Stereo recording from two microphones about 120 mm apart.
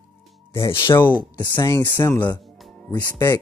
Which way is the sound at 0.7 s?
45° left (ahead or behind).